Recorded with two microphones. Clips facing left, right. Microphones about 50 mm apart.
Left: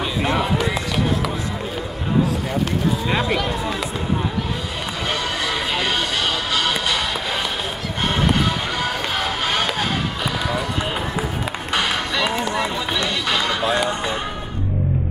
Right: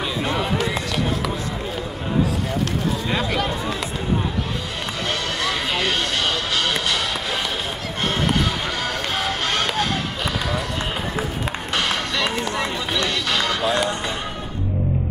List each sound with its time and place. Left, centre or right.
3.1 s speech: centre
5.4 s music: centre
8.3 s music: centre
11.7 s music: centre
13.3 s run: centre